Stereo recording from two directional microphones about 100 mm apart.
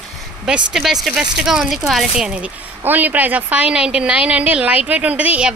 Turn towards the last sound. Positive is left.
turn(degrees=-10)  # may be behind; listen again after turning